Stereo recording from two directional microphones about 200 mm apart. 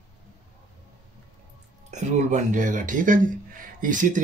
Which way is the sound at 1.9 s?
35° right (ahead or behind).